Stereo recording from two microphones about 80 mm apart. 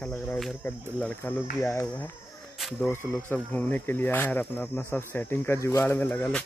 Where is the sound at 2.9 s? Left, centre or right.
Left.